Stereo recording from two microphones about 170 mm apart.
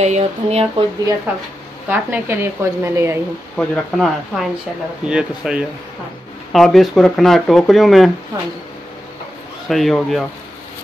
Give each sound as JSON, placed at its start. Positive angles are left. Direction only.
{"t": 0.0, "sound": "speech", "side_deg": -40}
{"t": 1.9, "sound": "speech", "side_deg": -10}
{"t": 3.5, "sound": "speech", "side_deg": 0}
{"t": 9.7, "sound": "speech", "side_deg": 0}